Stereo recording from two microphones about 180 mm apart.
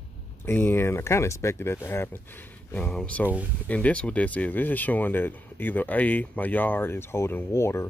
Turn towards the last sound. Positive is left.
turn(degrees=15)  # may be behind; listen again after turning